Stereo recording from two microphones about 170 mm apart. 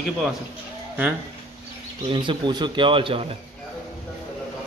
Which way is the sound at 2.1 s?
30° right (ahead or behind).